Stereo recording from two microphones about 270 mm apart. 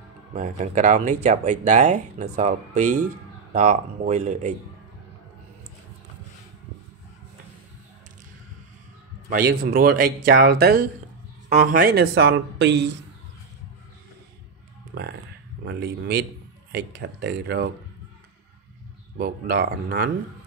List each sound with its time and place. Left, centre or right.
0.3 s speech: right
9.3 s speech: right
14.9 s speech: right
19.1 s speech: right